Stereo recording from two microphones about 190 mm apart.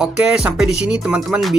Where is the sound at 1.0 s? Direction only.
5° right (ahead or behind).